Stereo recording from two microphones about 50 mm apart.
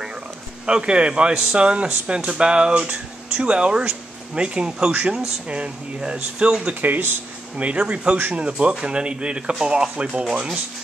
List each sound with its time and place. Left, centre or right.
0.7 s speech: centre
6.7 s speech: right
7.5 s speech: right